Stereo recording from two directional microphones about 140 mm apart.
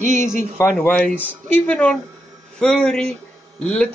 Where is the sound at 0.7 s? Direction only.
5° left (ahead or behind).